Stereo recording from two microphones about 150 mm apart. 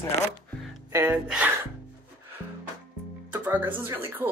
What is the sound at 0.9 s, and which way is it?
Speech, 15° right (ahead or behind).